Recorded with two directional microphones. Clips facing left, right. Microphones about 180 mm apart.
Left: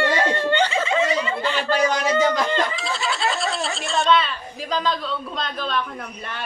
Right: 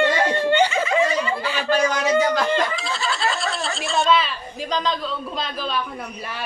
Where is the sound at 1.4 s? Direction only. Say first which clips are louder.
Left 2 dB; 10° right (ahead or behind).